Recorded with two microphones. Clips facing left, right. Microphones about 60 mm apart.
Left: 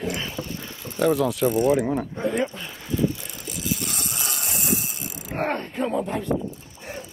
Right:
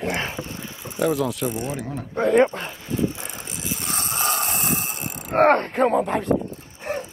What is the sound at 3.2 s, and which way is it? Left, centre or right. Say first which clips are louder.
Vehicle: right 1 dB; right.